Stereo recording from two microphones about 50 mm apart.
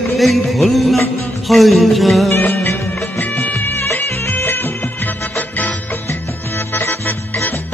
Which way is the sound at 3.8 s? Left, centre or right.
Left.